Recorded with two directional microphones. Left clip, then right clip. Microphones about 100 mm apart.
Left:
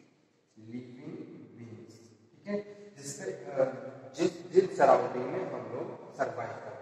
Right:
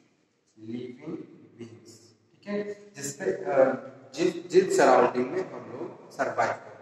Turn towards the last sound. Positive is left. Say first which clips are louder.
# right 10 dB
turn(degrees=-30)  # may be behind; listen again after turning